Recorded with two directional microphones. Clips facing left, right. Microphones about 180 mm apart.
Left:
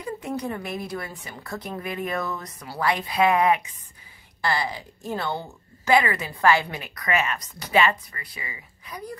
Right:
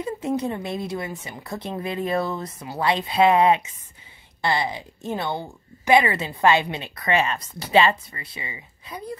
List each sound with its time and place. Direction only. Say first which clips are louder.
0.0 s speech: right 5 dB; 25° right (ahead or behind)